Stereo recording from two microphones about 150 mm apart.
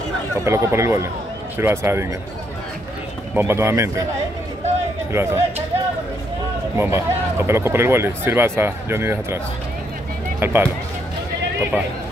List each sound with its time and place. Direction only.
0.5 s speech: 20° right (ahead or behind)
3.3 s speech: 15° right (ahead or behind)
5.1 s speech: 15° right (ahead or behind)
6.8 s speech: 15° right (ahead or behind)
10.4 s speech: 15° right (ahead or behind)